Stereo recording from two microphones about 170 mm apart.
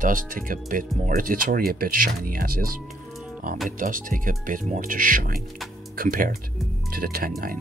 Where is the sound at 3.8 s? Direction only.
50° right (ahead or behind).